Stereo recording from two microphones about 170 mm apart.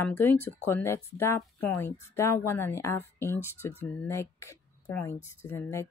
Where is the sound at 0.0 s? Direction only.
10° left (ahead or behind).